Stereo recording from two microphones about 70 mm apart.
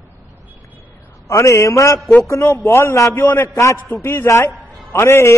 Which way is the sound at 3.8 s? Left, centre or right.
Left.